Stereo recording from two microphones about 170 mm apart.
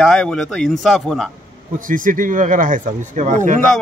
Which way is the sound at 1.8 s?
50° right (ahead or behind).